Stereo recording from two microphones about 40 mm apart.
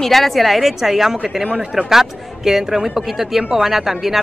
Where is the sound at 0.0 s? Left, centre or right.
Centre.